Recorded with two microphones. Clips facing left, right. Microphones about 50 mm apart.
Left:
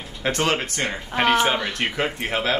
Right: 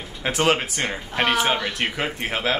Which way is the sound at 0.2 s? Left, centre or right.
Centre.